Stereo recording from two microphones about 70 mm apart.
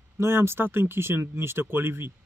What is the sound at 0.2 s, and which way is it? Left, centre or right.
Speech, right.